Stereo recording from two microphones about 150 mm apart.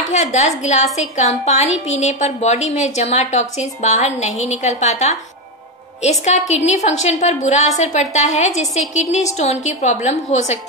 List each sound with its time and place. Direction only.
0.1 s a woman's voice: 50° left (ahead or behind)